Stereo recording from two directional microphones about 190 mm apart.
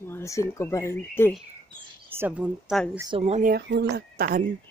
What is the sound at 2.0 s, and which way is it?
Speech, 10° right (ahead or behind).